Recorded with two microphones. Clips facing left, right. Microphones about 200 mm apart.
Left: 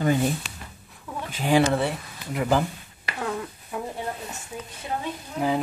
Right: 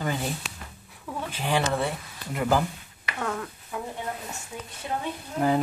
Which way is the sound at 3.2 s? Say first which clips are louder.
Left 1 dB; 10° left (ahead or behind).